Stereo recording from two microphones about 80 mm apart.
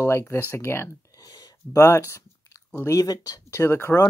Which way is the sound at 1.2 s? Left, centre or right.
Left.